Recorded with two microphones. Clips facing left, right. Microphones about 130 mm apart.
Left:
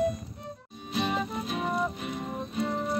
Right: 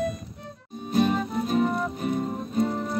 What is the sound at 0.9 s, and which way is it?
Music, 45° right (ahead or behind).